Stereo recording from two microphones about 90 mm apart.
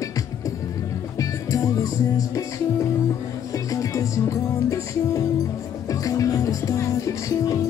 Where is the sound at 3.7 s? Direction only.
40° left (ahead or behind).